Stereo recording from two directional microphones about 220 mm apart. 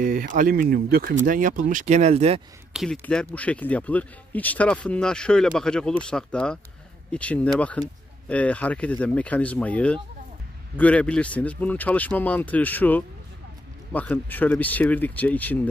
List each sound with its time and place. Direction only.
0.0 s speech: 40° right (ahead or behind)
2.7 s speech: centre (ahead or behind)